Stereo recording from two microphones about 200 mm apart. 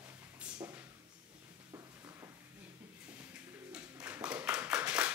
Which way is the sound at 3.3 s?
5° right (ahead or behind).